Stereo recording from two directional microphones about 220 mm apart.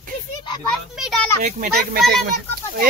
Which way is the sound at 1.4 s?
40° right (ahead or behind).